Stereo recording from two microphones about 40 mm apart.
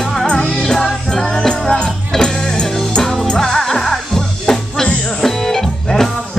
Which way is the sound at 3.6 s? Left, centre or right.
Centre.